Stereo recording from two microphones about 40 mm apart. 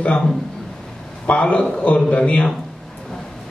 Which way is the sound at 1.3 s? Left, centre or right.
Left.